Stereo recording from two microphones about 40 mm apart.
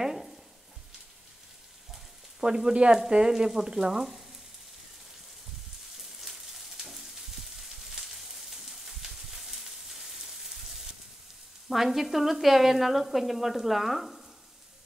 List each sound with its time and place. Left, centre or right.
0.0 s frying: centre
2.4 s frying: centre
5.9 s frying: centre
11.7 s speech: centre